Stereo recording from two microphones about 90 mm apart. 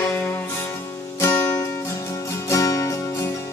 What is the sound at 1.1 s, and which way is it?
Music, 30° left (ahead or behind).